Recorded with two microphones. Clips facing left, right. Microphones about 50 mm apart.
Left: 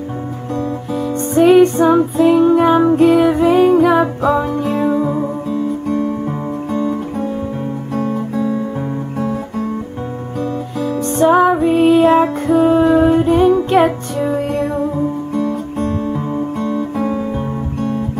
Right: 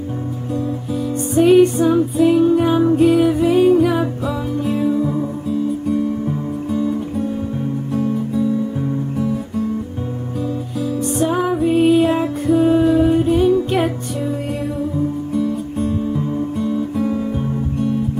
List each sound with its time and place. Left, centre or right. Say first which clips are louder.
1.6 s music: left 3 dB; left
4.4 s music: left 3 dB; left
4.9 s music: left 3 dB; left
7.9 s guitar: left 1 dB; left
10.8 s music: left 4 dB; left